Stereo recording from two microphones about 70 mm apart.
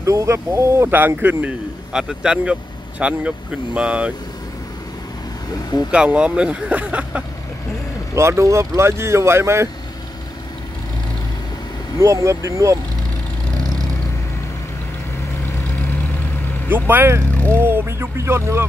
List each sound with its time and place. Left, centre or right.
0.0 s speech: right
0.8 s speech: right
1.9 s speech: centre
5.9 s speech: centre
8.2 s speech: right
12.0 s speech: right
16.6 s speech: right